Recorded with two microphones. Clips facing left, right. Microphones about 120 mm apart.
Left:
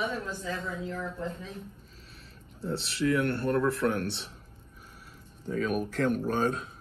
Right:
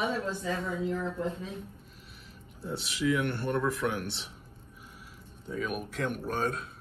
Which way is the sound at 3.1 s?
Centre (ahead or behind).